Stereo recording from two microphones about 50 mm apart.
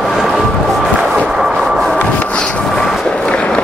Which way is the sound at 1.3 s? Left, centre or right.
Centre.